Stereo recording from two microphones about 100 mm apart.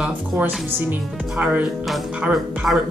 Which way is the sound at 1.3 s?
10° right (ahead or behind).